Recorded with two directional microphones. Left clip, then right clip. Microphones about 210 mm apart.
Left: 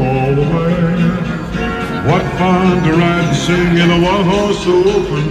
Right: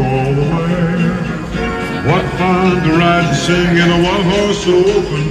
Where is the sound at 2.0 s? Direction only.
40° left (ahead or behind).